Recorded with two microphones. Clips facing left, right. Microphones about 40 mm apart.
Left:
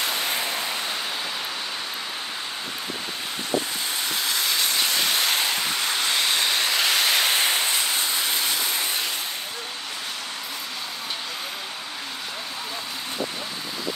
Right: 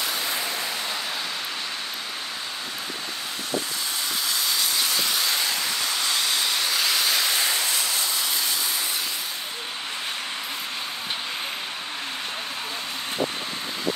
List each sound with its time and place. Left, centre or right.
0.2 s vehicle: left
5.2 s steam: left